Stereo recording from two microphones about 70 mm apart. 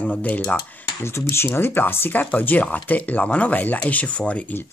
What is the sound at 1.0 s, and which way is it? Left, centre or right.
Speech, left.